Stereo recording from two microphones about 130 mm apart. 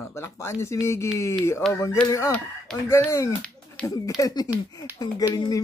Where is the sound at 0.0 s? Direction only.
20° left (ahead or behind).